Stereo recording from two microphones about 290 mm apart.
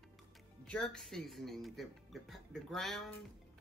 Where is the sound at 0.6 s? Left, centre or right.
Centre.